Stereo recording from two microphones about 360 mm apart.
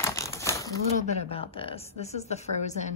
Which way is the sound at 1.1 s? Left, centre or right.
Centre.